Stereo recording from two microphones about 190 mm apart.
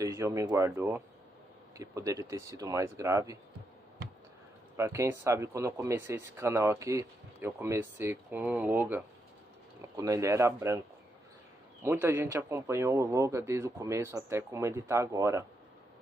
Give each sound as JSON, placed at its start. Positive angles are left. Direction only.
{"t": 0.0, "sound": "speech", "side_deg": -15}
{"t": 4.7, "sound": "speech", "side_deg": -15}
{"t": 11.8, "sound": "speech", "side_deg": -10}